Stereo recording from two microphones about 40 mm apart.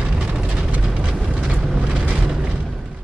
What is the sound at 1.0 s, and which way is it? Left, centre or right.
Vehicle, right.